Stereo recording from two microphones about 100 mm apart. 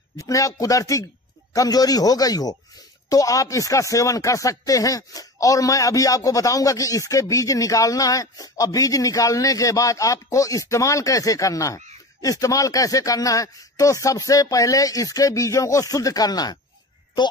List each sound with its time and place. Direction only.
0.2 s speech: 35° left (ahead or behind)